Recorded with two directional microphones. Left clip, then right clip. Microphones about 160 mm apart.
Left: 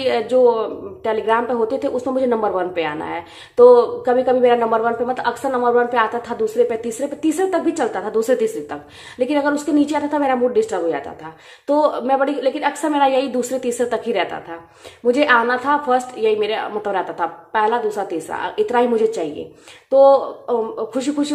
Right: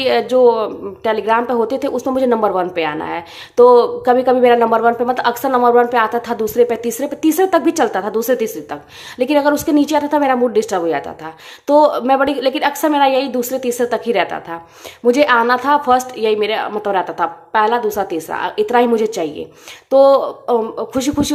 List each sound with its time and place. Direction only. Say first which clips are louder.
0.0 s speech: right 3 dB; 25° right (ahead or behind)